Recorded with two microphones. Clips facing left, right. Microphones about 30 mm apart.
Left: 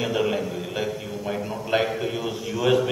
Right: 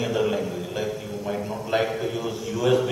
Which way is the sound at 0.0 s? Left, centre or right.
Centre.